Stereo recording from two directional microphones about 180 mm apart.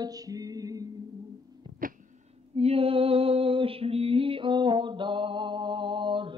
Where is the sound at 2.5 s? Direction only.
35° right (ahead or behind).